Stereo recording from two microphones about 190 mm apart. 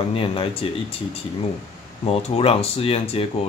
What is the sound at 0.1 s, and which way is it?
Speech, 30° left (ahead or behind).